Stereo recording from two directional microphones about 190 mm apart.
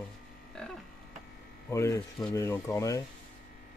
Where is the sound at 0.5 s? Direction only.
5° left (ahead or behind).